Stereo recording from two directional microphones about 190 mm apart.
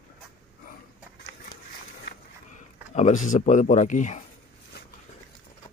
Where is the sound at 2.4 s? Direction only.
40° left (ahead or behind).